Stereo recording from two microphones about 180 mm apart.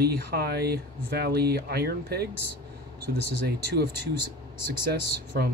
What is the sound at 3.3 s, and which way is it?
Speech, 60° right (ahead or behind).